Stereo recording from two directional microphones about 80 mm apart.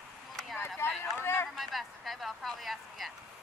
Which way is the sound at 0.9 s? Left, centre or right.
Centre.